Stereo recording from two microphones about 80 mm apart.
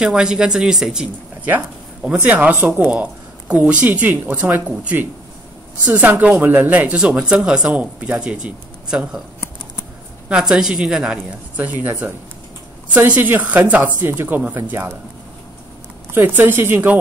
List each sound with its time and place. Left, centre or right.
0.0 s speech: centre
1.0 s speech: centre
10.2 s speech: centre
11.5 s speech: right
12.9 s speech: right
16.1 s speech: right